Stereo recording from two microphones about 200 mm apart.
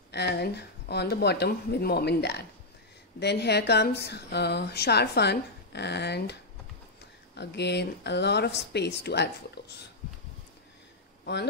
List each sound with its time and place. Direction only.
0.1 s a woman's voice: 55° left (ahead or behind)
7.3 s a woman's voice: 60° left (ahead or behind)